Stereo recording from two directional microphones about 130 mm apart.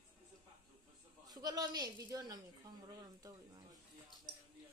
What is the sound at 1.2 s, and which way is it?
A man's voice, 30° right (ahead or behind).